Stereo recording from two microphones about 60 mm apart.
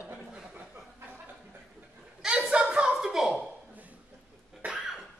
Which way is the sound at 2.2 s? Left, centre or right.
Centre.